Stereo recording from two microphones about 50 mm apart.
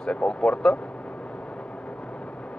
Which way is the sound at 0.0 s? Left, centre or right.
Centre.